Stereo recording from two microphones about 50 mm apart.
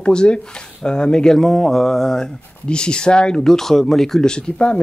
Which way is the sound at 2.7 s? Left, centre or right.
Centre.